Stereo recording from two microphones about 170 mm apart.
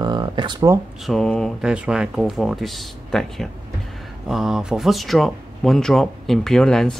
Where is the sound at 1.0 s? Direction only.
Centre (ahead or behind).